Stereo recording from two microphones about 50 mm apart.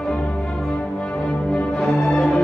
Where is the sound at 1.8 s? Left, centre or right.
Centre.